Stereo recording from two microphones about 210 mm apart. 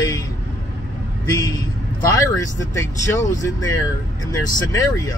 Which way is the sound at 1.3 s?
15° left (ahead or behind).